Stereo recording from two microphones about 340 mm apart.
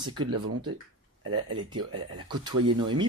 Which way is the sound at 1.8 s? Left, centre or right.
Right.